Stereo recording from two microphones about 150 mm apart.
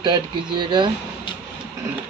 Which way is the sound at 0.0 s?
30° right (ahead or behind).